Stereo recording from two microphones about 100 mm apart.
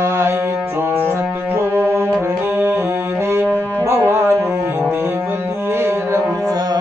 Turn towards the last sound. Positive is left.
turn(degrees=-25)  # may be behind; listen again after turning